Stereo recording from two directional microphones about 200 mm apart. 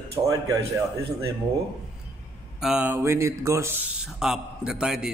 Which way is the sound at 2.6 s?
5° right (ahead or behind).